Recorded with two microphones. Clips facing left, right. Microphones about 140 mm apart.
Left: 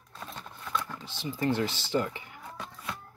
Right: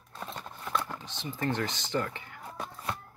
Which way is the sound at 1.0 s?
10° left (ahead or behind).